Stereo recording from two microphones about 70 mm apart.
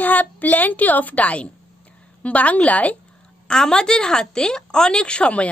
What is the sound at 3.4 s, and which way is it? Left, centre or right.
A woman's voice, centre.